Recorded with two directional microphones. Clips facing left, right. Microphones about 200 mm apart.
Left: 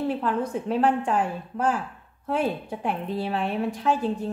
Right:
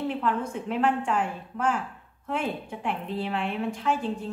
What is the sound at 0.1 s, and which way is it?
A woman's voice, 35° left (ahead or behind).